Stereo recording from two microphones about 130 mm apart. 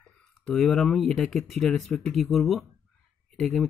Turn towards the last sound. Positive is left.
turn(degrees=5)  # may be behind; listen again after turning